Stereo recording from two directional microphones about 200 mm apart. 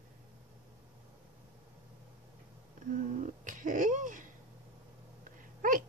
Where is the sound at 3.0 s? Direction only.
40° right (ahead or behind).